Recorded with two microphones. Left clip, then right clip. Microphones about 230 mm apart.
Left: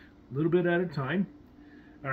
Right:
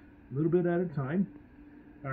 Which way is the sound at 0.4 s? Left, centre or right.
Left.